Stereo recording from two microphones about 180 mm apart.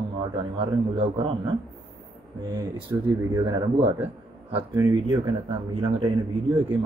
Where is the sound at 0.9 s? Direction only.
35° right (ahead or behind).